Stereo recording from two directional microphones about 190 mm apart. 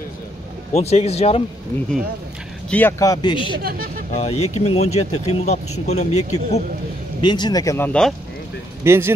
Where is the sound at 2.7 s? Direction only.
15° left (ahead or behind).